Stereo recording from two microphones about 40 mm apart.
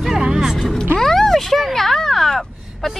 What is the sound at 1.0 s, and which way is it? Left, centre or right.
Speech, centre.